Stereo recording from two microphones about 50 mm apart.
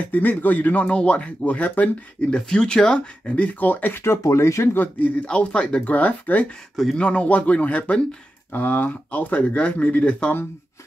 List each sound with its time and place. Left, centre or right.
0.0 s speech: left
2.3 s speech: centre
3.6 s speech: left
4.0 s speech: left
5.1 s speech: left
5.9 s speech: left